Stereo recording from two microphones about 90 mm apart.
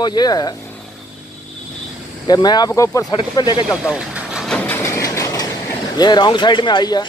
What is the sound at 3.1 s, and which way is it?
Speech, 60° left (ahead or behind).